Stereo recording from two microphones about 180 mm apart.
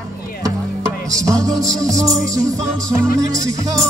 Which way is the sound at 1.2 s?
20° right (ahead or behind).